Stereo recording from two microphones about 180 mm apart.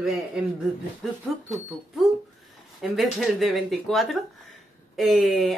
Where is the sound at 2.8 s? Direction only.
Centre (ahead or behind).